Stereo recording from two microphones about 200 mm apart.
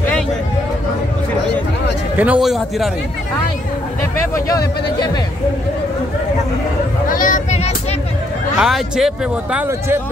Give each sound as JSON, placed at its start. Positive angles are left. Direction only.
{"t": 2.1, "sound": "speech", "side_deg": -5}
{"t": 4.5, "sound": "speech", "side_deg": 20}
{"t": 7.1, "sound": "a sound", "side_deg": 45}
{"t": 8.5, "sound": "speech", "side_deg": 0}